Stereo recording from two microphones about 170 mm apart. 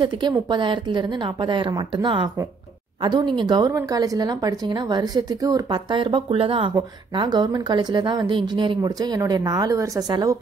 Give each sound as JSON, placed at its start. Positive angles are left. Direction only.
{"t": 0.0, "sound": "a woman's voice", "side_deg": -25}